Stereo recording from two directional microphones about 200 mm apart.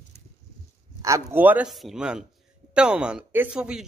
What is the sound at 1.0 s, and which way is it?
A man's voice, 15° right (ahead or behind).